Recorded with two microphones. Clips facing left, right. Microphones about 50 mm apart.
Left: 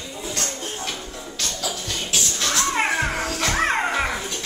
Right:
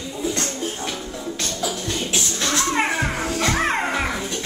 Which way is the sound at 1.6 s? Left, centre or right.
Right.